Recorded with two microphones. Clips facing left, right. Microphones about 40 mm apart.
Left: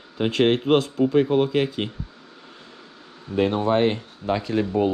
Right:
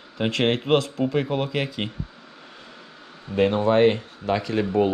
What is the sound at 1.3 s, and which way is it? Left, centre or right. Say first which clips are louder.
Speech: left 5 dB; right.